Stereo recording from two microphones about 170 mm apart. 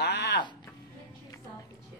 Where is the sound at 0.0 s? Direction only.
90° left.